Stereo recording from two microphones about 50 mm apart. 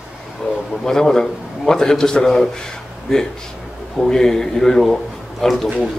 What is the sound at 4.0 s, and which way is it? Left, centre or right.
A man's voice, centre.